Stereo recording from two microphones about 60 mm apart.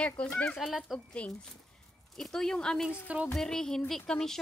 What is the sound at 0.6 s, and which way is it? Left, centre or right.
Speech, centre.